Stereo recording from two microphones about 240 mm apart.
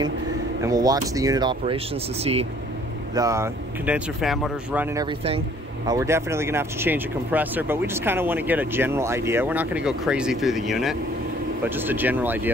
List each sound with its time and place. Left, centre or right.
0.6 s speech: centre
3.2 s speech: centre
4.9 s speech: right
5.9 s speech: centre